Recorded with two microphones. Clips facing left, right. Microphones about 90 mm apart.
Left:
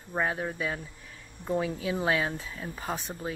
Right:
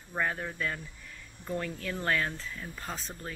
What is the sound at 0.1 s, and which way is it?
Speech, 15° left (ahead or behind).